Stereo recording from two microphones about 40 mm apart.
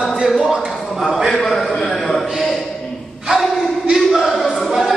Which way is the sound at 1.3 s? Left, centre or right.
Centre.